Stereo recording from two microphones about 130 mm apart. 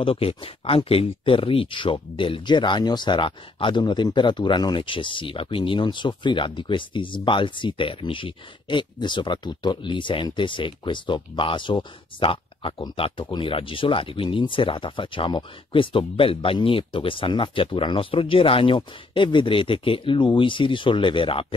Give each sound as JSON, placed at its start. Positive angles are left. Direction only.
{"t": 0.0, "sound": "speech", "side_deg": 45}